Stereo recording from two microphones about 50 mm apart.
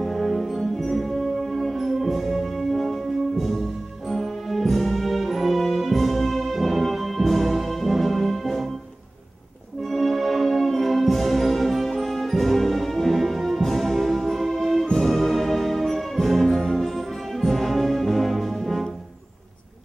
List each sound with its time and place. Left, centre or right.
0.0 s music: centre
9.8 s music: centre